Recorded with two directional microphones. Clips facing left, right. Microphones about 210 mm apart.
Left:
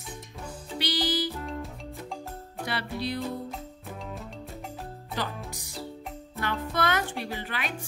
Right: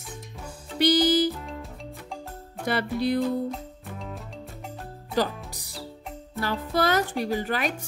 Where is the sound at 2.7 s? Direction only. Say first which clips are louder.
Right 7 dB; 45° right (ahead or behind).